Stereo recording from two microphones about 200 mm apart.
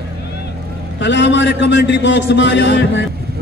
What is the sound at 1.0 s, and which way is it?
A man's voice, 65° left (ahead or behind).